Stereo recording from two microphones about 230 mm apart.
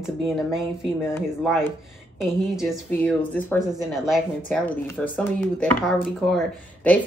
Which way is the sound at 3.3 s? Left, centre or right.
Centre.